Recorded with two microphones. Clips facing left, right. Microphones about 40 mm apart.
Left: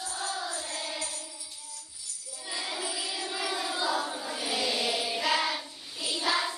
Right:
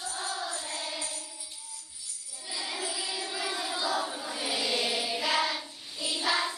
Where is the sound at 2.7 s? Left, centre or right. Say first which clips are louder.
Right 1 dB; centre.